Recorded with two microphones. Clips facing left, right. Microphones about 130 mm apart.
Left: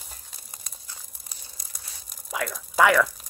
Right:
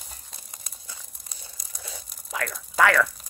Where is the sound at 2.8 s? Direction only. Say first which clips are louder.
Left 1 dB; 15° left (ahead or behind).